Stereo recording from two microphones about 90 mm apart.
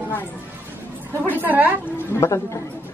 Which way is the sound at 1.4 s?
20° right (ahead or behind).